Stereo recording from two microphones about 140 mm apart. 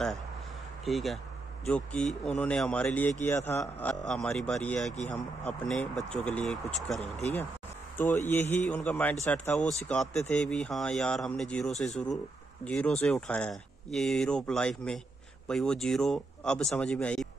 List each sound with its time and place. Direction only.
0.8 s speech: centre (ahead or behind); by 3.9 s 15° left (ahead or behind)
3.9 s speech: 5° left (ahead or behind)
7.0 s speech: 50° left (ahead or behind)
8.3 s speech: 15° left (ahead or behind)